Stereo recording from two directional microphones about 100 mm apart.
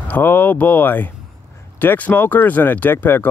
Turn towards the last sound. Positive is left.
turn(degrees=20)  # may be behind; listen again after turning